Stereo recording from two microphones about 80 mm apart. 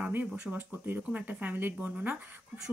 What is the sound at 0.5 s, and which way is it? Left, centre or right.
Speech, right.